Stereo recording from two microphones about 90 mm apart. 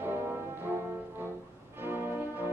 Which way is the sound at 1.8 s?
25° right (ahead or behind).